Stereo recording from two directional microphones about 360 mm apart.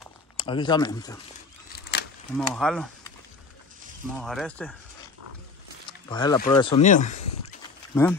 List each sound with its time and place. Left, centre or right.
0.4 s speech: centre
1.7 s a sound: left
2.3 s speech: centre
4.2 s speech: centre
5.9 s wild animals: centre
6.5 s speech: centre
7.9 s speech: centre